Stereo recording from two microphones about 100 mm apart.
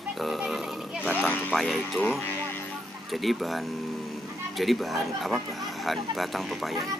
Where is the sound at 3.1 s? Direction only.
Centre (ahead or behind).